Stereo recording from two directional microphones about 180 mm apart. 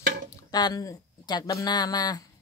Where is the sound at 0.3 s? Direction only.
20° left (ahead or behind).